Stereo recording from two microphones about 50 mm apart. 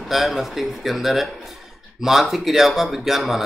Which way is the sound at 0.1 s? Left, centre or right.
Centre.